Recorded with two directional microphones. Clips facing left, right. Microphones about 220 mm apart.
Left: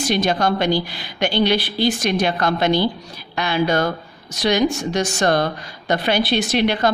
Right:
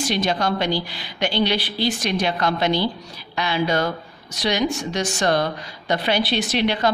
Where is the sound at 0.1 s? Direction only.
50° left (ahead or behind).